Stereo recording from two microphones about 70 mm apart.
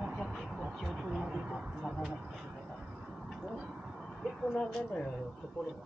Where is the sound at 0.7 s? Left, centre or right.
Centre.